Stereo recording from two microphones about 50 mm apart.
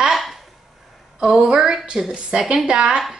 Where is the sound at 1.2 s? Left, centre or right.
Centre.